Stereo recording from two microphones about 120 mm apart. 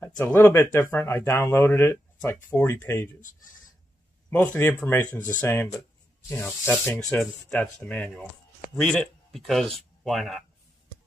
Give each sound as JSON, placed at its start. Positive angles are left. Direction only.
{"t": 0.0, "sound": "speech", "side_deg": 20}
{"t": 4.3, "sound": "speech", "side_deg": 10}